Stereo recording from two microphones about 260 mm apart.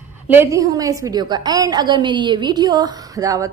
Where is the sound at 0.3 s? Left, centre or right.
Centre.